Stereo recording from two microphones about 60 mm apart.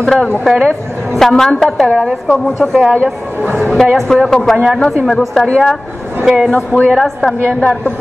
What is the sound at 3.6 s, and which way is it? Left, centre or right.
A woman's voice, centre.